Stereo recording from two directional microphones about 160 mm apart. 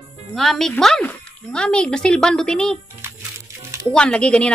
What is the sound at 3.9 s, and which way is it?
Speech, 5° left (ahead or behind).